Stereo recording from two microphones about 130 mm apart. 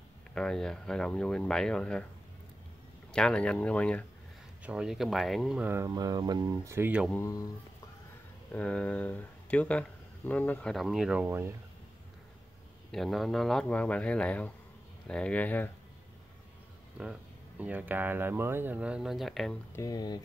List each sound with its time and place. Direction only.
0.3 s speech: 5° left (ahead or behind)
3.1 s speech: 5° left (ahead or behind)
4.6 s speech: 5° right (ahead or behind)
5.6 s speech: 15° right (ahead or behind)
5.9 s speech: 30° right (ahead or behind)
8.5 s speech: 10° left (ahead or behind)
10.7 s speech: centre (ahead or behind)
11.2 s speech: 20° right (ahead or behind)
12.9 s speech: centre (ahead or behind)
17.0 s speech: 10° right (ahead or behind)
19.7 s speech: 25° left (ahead or behind)